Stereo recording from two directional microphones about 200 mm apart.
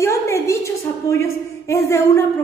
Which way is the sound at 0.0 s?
15° left (ahead or behind).